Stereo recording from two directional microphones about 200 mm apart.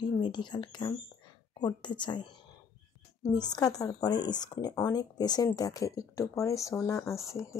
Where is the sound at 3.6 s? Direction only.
20° left (ahead or behind).